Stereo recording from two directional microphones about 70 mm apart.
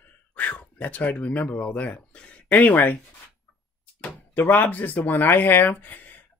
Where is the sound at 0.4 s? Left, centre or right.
Left.